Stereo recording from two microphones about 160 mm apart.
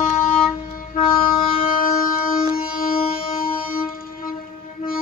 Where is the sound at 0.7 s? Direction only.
60° left (ahead or behind).